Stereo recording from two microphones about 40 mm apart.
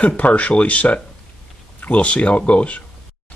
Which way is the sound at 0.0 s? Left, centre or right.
Left.